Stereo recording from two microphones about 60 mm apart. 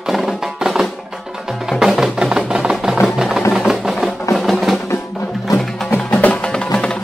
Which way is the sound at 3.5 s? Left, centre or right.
Centre.